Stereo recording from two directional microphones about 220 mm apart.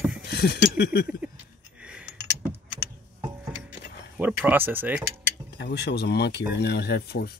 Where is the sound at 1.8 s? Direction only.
5° right (ahead or behind).